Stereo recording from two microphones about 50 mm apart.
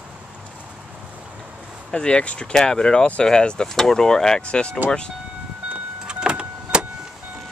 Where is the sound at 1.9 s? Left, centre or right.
Centre.